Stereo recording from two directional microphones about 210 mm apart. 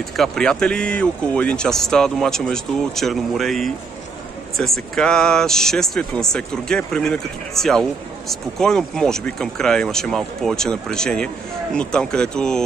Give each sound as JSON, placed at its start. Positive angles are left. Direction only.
{"t": 0.1, "sound": "speech", "side_deg": 5}